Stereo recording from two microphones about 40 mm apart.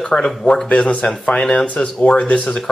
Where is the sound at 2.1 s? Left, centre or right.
Left.